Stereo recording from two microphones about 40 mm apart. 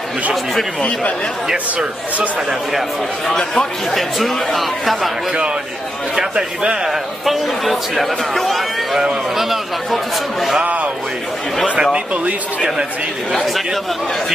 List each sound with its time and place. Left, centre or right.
3.3 s speech: centre
4.2 s speech: centre
6.1 s a man's voice: centre
6.9 s speech: centre
10.6 s speech: right
12.1 s speech: right
13.3 s speech: centre